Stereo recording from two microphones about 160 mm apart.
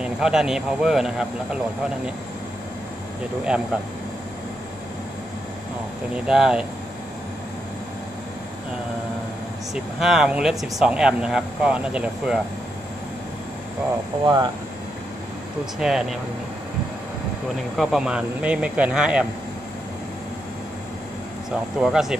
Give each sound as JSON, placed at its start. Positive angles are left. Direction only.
{"t": 0.0, "sound": "speech", "side_deg": -5}
{"t": 3.4, "sound": "speech", "side_deg": -5}
{"t": 6.1, "sound": "speech", "side_deg": -5}
{"t": 9.9, "sound": "speech", "side_deg": -5}
{"t": 14.2, "sound": "speech", "side_deg": -25}
{"t": 15.8, "sound": "speech", "side_deg": -5}
{"t": 17.7, "sound": "speech", "side_deg": -5}
{"t": 21.5, "sound": "speech", "side_deg": -5}